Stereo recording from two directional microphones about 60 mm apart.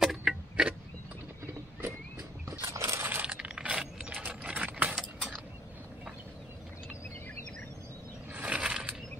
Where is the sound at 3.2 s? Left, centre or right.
Centre.